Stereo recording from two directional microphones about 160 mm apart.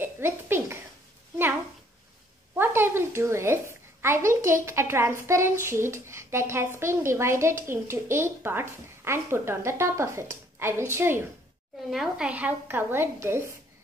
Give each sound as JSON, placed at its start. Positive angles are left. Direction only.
{"t": 0.0, "sound": "a sound", "side_deg": -15}
{"t": 2.5, "sound": "a woman's voice", "side_deg": -15}
{"t": 11.9, "sound": "a woman's voice", "side_deg": -5}